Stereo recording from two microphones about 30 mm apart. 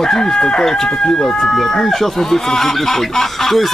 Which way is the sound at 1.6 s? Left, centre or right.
Centre.